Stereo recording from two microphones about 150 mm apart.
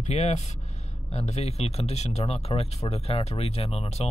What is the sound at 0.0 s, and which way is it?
Speech, 50° left (ahead or behind).